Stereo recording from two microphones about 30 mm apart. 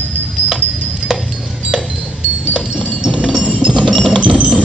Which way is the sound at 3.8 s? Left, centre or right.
Left.